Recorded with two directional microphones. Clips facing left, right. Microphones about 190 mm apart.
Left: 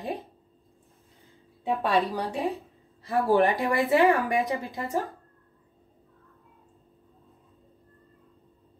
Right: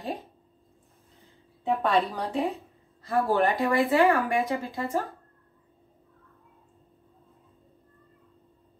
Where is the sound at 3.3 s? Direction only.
15° left (ahead or behind).